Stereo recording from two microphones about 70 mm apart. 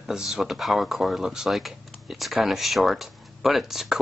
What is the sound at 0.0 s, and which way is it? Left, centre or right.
Speech, centre.